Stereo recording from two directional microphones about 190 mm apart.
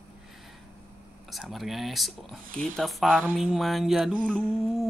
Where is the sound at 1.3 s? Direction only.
Centre (ahead or behind).